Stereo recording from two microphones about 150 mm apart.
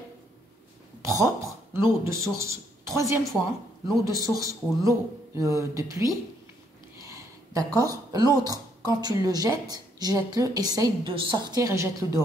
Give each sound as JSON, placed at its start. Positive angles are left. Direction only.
{"t": 1.0, "sound": "speech", "side_deg": -20}
{"t": 7.2, "sound": "a sound", "side_deg": -25}
{"t": 8.5, "sound": "speech", "side_deg": -25}